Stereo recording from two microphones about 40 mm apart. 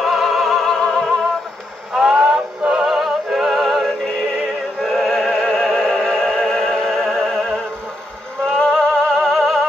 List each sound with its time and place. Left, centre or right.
0.0 s music: centre
0.7 s music: centre
2.0 s music: right
3.4 s music: centre
8.7 s music: centre